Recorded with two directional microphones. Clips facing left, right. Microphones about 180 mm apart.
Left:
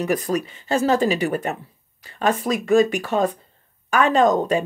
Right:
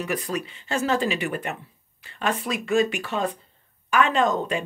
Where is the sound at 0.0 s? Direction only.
45° left (ahead or behind).